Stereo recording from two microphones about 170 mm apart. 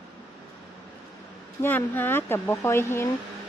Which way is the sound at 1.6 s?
10° left (ahead or behind).